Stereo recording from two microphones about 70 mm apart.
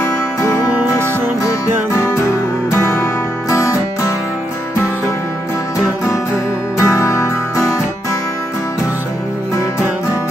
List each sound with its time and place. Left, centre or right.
0.0 s music: left
6.8 s music: left